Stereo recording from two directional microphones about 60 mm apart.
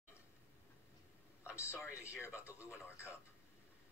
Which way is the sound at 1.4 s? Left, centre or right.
Right.